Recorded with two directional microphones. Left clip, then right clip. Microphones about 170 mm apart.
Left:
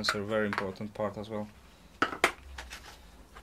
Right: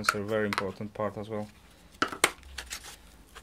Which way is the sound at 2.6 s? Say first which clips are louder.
Right 4 dB; 35° right (ahead or behind).